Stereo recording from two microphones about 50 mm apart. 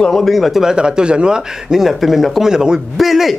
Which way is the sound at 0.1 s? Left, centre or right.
Centre.